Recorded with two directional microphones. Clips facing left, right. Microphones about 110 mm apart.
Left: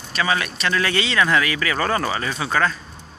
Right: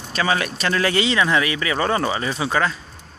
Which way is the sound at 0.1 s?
30° right (ahead or behind).